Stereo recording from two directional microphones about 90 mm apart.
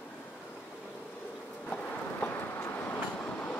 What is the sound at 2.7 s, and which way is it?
Train, 20° left (ahead or behind).